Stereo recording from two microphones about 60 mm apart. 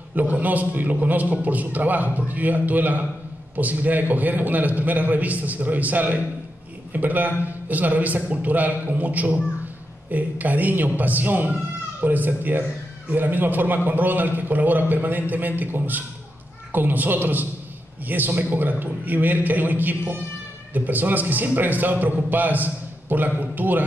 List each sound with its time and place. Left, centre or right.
0.1 s a man's voice: right